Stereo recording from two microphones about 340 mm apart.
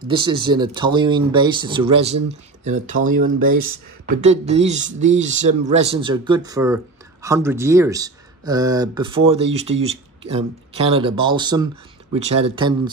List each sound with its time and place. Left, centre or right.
0.1 s speech: centre